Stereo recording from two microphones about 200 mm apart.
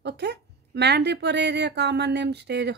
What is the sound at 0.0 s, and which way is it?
A woman's voice, 55° right (ahead or behind).